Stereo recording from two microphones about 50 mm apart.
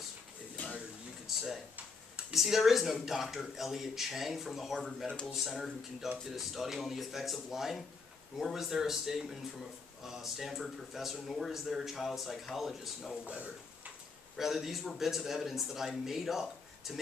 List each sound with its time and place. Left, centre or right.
1.2 s a sound: centre
2.3 s speech: centre
13.2 s speech: right
14.3 s speech: centre